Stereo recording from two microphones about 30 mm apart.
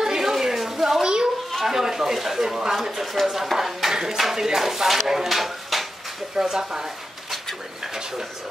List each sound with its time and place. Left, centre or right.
0.0 s a sound: centre
1.0 s children playing: right
1.6 s speech: centre
2.7 s speech: centre
3.5 s a sound: centre
4.2 s speech: centre
6.3 s speech: centre